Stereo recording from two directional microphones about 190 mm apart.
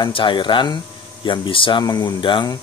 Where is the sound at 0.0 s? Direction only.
25° left (ahead or behind).